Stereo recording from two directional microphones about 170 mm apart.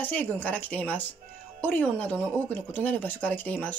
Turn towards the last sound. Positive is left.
turn(degrees=10)  # may be behind; listen again after turning